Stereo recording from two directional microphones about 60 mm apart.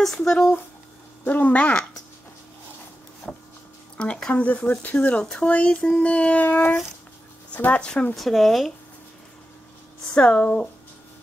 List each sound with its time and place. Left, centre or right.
0.0 s speech: centre
1.2 s speech: left
3.9 s a sound: centre
4.3 s speech: left
8.2 s speech: centre
10.1 s speech: centre